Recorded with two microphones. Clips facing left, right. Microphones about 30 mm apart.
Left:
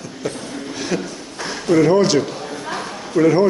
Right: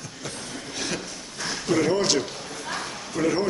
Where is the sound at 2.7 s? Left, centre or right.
Left.